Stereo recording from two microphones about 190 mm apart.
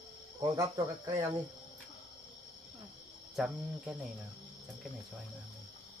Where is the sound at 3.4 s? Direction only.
Centre (ahead or behind).